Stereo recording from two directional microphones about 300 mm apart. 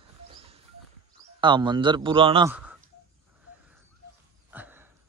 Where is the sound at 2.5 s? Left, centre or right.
Centre.